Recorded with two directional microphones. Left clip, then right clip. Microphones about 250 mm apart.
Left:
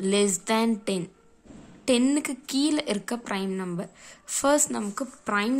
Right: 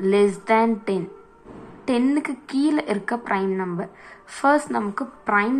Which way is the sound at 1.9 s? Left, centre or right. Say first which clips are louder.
Right 2 dB; left.